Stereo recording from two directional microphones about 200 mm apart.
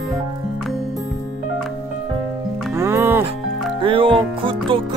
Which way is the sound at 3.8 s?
25° right (ahead or behind).